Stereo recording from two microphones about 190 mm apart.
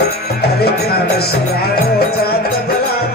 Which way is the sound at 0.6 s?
55° left (ahead or behind).